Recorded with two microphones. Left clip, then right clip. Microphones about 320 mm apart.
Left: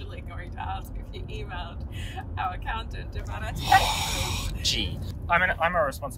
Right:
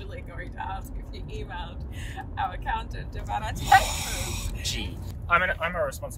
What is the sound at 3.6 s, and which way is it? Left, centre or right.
Speech, centre.